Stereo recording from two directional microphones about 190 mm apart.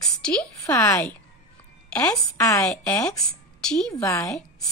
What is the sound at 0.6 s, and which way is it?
A woman's voice, 15° left (ahead or behind).